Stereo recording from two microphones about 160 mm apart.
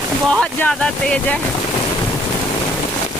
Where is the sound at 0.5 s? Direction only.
10° left (ahead or behind).